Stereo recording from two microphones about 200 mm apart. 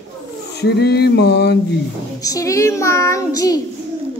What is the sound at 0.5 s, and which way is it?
Male singing, 55° left (ahead or behind).